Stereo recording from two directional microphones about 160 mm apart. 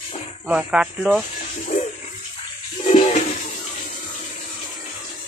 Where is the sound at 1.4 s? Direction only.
55° left (ahead or behind).